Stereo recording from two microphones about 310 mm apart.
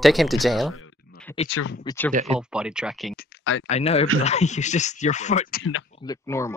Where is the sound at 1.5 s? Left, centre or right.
Left.